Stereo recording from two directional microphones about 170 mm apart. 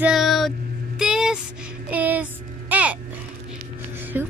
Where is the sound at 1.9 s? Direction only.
10° right (ahead or behind).